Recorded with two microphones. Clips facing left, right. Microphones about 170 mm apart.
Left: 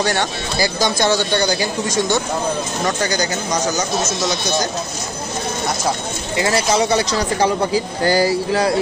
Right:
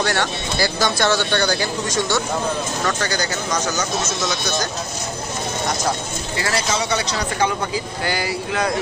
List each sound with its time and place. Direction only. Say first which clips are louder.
0.0 s speech: left 2 dB; 15° left (ahead or behind)
6.3 s speech: left 5 dB; 25° left (ahead or behind)
6.7 s speech: left 6 dB; 35° left (ahead or behind)